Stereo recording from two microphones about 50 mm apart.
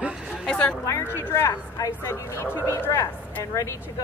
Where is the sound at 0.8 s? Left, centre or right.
Left.